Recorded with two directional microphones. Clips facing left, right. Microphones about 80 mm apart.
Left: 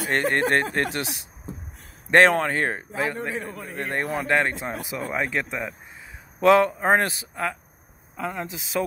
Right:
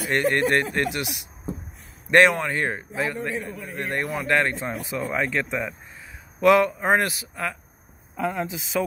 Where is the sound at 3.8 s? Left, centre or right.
Left.